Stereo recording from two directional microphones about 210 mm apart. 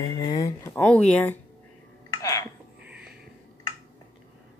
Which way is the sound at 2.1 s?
15° left (ahead or behind).